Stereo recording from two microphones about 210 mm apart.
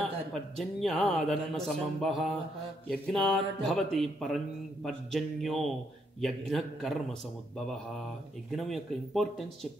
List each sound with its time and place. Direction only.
0.0 s speech: centre (ahead or behind)
8.5 s speech: centre (ahead or behind)